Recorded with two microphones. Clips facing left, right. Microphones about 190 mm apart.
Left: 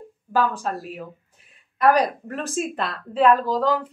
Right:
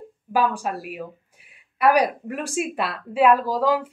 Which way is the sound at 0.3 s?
10° right (ahead or behind).